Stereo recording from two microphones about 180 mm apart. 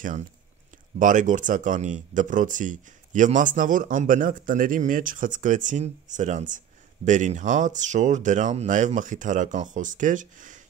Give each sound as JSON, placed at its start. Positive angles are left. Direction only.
{"t": 0.9, "sound": "speech", "side_deg": -45}